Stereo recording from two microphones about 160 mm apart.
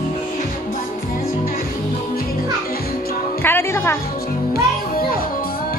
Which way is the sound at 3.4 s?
15° left (ahead or behind).